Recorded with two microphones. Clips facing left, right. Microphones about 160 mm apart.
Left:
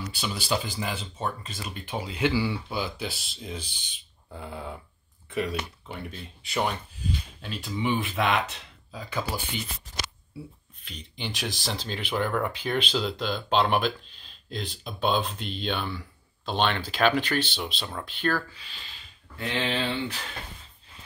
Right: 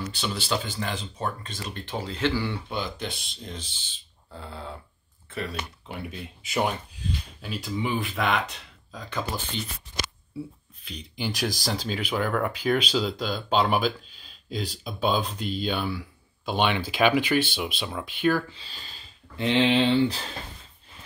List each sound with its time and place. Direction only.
0.1 s speech: 10° left (ahead or behind)
5.9 s speech: centre (ahead or behind)
11.1 s speech: 5° right (ahead or behind)
18.5 s speech: 35° right (ahead or behind)
19.3 s speech: 20° right (ahead or behind)